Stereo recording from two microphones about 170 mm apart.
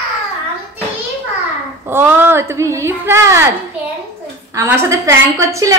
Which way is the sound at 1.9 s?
10° right (ahead or behind).